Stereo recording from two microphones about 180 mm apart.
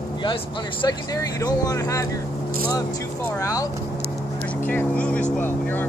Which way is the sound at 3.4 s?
20° left (ahead or behind).